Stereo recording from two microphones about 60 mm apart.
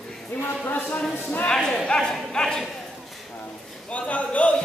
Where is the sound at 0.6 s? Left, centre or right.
Left.